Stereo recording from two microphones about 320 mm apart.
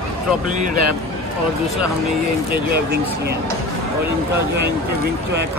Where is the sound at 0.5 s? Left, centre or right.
Right.